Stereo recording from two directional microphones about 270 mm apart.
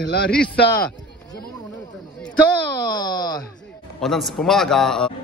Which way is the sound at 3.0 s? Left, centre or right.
Centre.